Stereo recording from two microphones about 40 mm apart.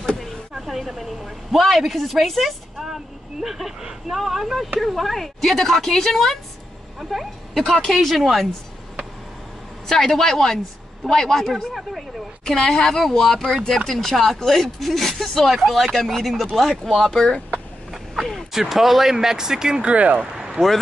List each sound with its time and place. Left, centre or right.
0.2 s a man's voice: centre
7.5 s speech: centre
9.8 s speech: centre
13.4 s speech: centre
18.1 s a sound: centre
18.5 s speech: centre
19.9 s speech: right
20.2 s speech: centre